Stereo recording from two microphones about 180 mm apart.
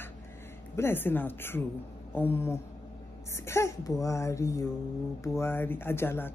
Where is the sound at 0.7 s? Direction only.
10° left (ahead or behind).